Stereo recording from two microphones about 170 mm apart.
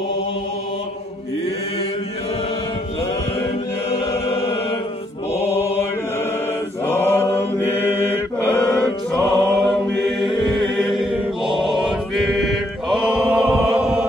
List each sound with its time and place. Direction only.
5.3 s mantra: 15° left (ahead or behind)
6.9 s mantra: 15° left (ahead or behind); by 13.9 s 5° right (ahead or behind)